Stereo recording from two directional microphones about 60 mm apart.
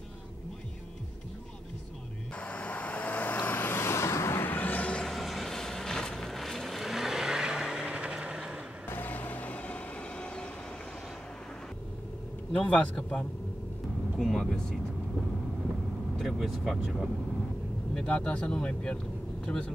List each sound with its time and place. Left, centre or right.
2.3 s vehicle: left
4.5 s music: left
5.0 s vehicle: centre
8.8 s vehicle: left; by 10.5 s centre
12.5 s speech: centre
14.1 s speech: centre
16.2 s speech: centre
17.9 s speech: centre